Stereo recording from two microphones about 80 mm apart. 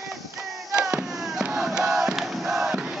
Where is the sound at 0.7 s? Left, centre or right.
Centre.